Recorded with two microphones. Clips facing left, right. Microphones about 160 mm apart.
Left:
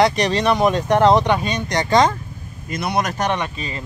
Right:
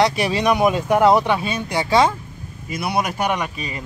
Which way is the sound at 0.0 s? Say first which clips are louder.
Left 1 dB; 5° right (ahead or behind).